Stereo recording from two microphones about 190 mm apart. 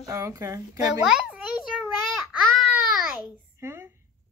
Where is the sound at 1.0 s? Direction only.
5° right (ahead or behind).